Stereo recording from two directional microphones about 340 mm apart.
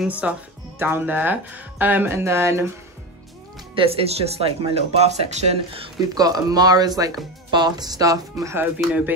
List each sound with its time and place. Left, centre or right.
0.0 s speech: centre
3.7 s speech: centre
6.9 s speech: centre
7.5 s speech: centre